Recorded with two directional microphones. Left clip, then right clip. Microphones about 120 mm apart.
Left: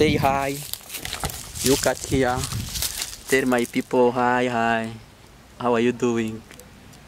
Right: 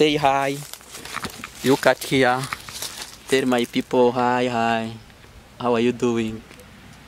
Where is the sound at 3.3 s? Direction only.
5° right (ahead or behind).